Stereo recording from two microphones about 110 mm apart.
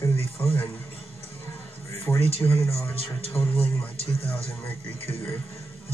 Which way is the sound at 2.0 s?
20° left (ahead or behind).